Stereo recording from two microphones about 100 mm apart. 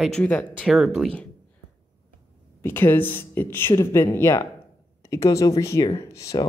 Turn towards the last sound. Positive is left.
turn(degrees=30)  # may be behind; listen again after turning